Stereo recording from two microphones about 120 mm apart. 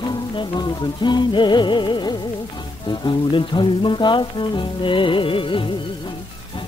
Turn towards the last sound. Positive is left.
turn(degrees=45)  # may be behind; listen again after turning